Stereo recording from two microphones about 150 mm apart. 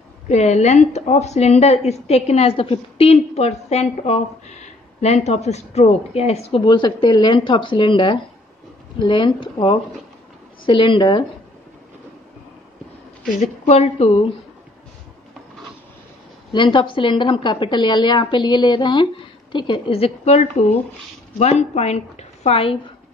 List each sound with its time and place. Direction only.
0.3 s a woman's voice: 50° left (ahead or behind)
6.6 s a woman's voice: 30° left (ahead or behind)
13.4 s a woman's voice: 45° left (ahead or behind)
16.5 s a woman's voice: 35° left (ahead or behind)